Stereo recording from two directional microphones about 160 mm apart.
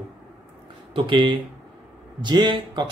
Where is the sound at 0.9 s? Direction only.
30° right (ahead or behind).